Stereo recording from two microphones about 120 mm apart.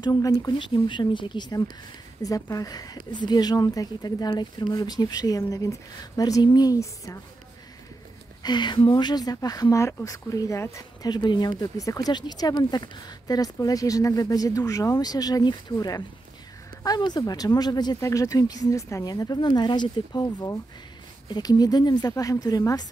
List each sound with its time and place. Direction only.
0.0 s a woman's voice: 30° left (ahead or behind)
0.6 s a woman's voice: 40° left (ahead or behind)
8.4 s a woman's voice: 40° left (ahead or behind)